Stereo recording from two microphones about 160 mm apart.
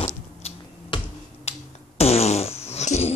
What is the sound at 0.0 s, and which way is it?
Finger snapping, 35° left (ahead or behind).